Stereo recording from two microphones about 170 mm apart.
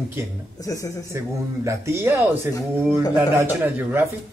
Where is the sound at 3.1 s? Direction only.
15° right (ahead or behind).